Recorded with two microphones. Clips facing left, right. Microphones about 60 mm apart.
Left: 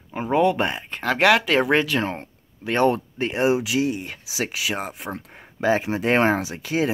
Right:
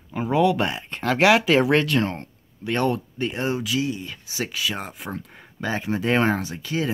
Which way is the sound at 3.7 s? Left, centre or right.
Left.